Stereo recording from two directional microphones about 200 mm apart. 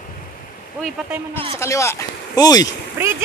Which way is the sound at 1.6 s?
15° left (ahead or behind).